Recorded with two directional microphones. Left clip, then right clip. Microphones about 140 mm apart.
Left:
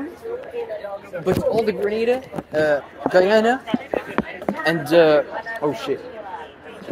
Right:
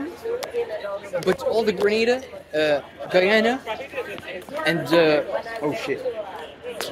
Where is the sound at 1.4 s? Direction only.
5° right (ahead or behind).